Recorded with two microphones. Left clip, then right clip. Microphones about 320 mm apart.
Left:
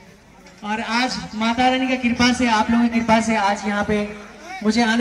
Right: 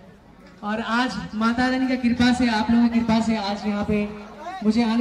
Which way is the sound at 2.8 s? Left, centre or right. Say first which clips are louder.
Left 4 dB; left.